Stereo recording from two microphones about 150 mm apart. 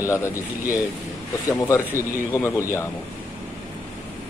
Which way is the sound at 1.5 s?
20° left (ahead or behind).